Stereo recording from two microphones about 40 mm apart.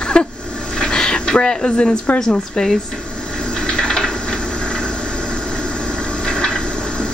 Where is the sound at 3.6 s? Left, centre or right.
Left.